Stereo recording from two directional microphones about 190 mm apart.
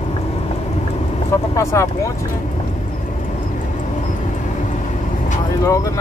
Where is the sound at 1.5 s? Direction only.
15° left (ahead or behind).